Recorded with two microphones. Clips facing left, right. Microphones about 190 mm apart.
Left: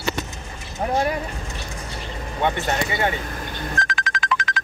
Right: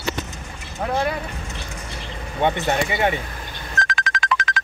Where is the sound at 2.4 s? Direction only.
20° right (ahead or behind).